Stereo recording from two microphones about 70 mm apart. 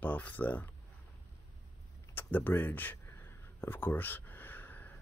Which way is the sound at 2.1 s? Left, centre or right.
Left.